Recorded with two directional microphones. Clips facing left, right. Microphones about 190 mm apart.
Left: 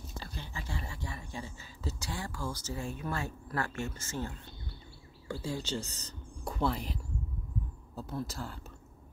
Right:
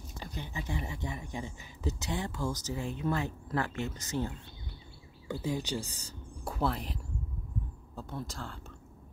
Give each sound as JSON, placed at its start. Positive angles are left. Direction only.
{"t": 0.2, "sound": "speech", "side_deg": -20}
{"t": 5.3, "sound": "speech", "side_deg": -20}